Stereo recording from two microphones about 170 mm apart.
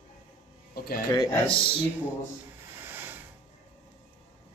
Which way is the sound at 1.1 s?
25° left (ahead or behind).